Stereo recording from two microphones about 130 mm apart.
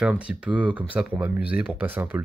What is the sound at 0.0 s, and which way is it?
Speech, 10° right (ahead or behind).